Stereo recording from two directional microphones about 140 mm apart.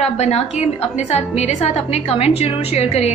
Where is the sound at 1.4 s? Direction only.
50° left (ahead or behind).